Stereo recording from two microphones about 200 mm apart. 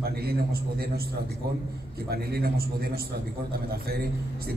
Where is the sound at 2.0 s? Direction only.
50° right (ahead or behind).